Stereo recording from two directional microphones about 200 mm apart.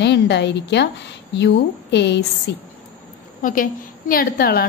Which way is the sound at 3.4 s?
45° left (ahead or behind).